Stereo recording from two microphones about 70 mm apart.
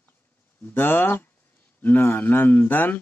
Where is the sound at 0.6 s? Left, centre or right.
Left.